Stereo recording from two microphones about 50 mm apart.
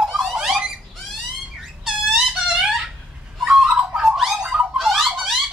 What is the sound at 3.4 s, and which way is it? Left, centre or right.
Fowl, centre.